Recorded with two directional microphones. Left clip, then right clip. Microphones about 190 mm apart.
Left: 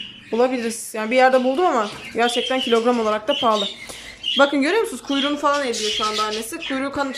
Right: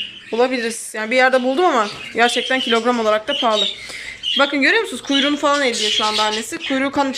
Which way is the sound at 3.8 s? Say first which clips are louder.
Right 3 dB; 15° left (ahead or behind).